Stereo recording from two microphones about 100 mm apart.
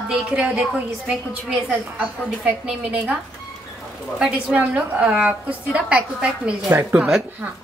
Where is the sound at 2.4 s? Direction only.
15° right (ahead or behind).